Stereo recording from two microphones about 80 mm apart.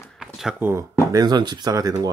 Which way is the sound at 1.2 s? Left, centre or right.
Right.